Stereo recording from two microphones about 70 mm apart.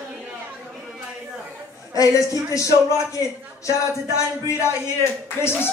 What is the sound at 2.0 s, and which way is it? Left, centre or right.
Music, left.